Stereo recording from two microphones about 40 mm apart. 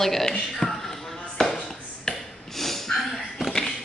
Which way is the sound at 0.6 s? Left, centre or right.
Centre.